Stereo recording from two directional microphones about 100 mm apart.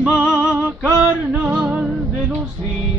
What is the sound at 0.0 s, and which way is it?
Music, 10° right (ahead or behind).